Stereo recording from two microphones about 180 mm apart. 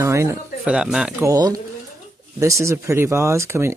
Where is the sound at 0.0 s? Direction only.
15° right (ahead or behind).